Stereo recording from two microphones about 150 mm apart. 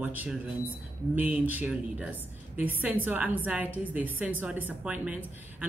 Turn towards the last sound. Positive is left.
turn(degrees=-10)  # may be behind; listen again after turning